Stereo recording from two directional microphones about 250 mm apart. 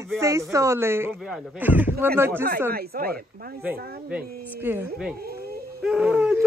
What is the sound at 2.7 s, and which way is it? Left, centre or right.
Speech, right.